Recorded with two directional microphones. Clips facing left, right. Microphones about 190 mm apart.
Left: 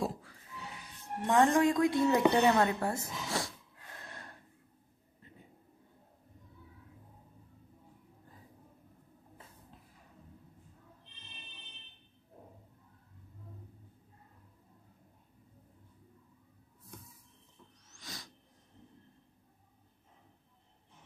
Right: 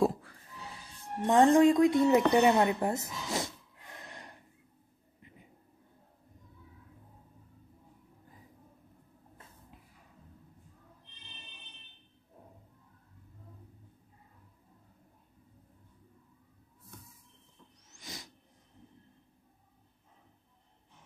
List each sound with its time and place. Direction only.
0.7 s a woman's voice: 30° right (ahead or behind)
2.3 s snort: 15° right (ahead or behind)
17.9 s a sound: 20° right (ahead or behind)